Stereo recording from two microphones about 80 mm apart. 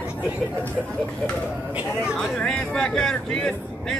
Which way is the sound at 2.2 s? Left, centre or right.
Centre.